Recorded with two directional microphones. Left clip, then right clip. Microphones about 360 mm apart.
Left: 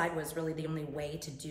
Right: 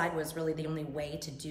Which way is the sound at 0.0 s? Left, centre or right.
Centre.